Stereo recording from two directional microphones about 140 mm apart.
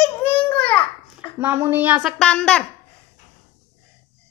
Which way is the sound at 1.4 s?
15° right (ahead or behind).